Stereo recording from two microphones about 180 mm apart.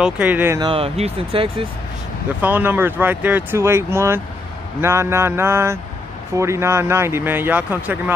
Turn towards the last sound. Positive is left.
turn(degrees=-10)  # may be behind; listen again after turning